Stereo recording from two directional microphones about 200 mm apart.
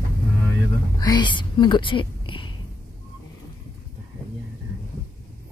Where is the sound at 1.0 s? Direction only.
20° left (ahead or behind).